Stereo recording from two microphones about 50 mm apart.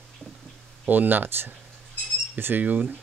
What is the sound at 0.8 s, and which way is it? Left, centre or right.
Speech, right.